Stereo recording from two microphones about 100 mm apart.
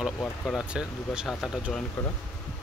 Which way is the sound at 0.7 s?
5° right (ahead or behind).